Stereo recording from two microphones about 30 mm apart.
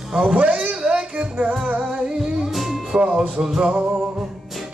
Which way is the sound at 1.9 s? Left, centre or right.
Right.